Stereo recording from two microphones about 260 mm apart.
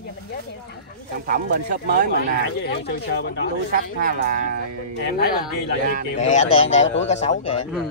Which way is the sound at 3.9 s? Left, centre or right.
Right.